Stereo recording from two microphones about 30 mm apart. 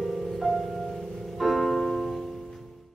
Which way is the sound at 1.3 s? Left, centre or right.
Centre.